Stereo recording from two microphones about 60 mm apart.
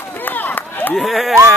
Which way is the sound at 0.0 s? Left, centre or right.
Left.